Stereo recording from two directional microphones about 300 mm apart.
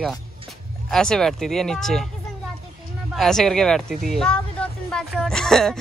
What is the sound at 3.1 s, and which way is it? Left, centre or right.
Speech, centre.